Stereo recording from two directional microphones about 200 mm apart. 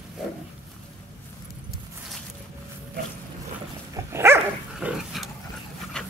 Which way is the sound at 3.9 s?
10° right (ahead or behind).